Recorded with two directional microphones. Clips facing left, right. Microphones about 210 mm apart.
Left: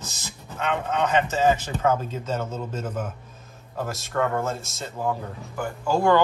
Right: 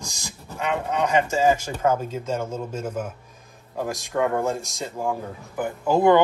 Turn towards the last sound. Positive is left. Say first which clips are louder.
# right 3 dB
turn(degrees=-20)  # may be behind; listen again after turning